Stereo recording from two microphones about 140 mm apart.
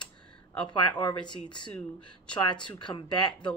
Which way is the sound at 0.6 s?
35° left (ahead or behind).